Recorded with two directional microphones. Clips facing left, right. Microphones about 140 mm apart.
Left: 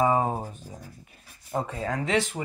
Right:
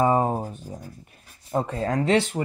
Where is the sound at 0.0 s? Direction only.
40° right (ahead or behind).